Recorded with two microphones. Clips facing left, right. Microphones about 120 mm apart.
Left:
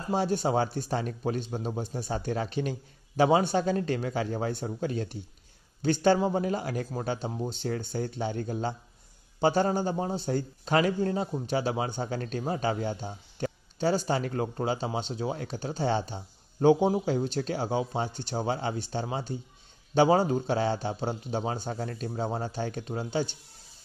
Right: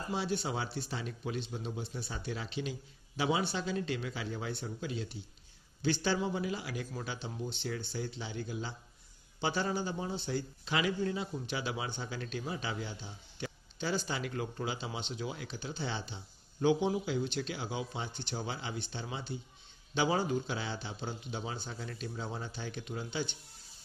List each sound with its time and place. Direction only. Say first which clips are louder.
0.1 s a man's voice: left 9 dB; 45° left (ahead or behind)